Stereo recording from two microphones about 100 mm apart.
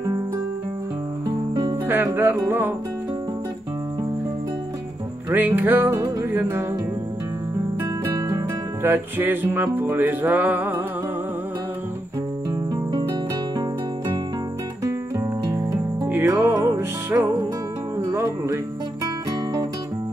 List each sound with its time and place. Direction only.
1.5 s music: 40° right (ahead or behind)
2.1 s music: 25° right (ahead or behind)
5.3 s music: 20° right (ahead or behind)
8.0 s music: 30° right (ahead or behind)
15.4 s music: 40° right (ahead or behind)
16.3 s music: 25° right (ahead or behind)